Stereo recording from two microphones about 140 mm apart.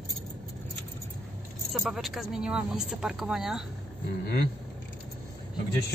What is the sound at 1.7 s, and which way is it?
Speech, centre (ahead or behind).